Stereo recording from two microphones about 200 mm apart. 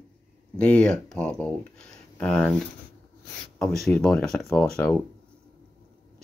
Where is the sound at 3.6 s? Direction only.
5° left (ahead or behind).